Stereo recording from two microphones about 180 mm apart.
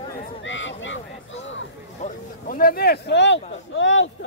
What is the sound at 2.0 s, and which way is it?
Speech, 50° left (ahead or behind).